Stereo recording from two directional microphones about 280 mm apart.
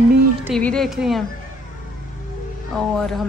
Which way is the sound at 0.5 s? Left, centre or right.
Centre.